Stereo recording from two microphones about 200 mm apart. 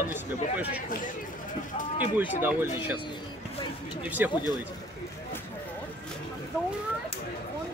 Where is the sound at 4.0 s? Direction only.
10° right (ahead or behind).